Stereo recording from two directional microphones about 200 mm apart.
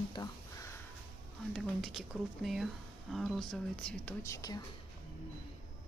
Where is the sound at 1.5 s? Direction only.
Centre (ahead or behind); by 4.6 s 20° left (ahead or behind).